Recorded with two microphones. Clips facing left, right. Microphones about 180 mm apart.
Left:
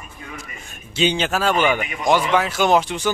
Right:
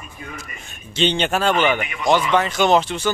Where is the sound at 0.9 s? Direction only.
10° left (ahead or behind).